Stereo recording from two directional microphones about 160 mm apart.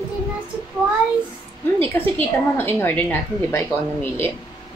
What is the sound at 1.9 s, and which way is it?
Speech, 15° left (ahead or behind).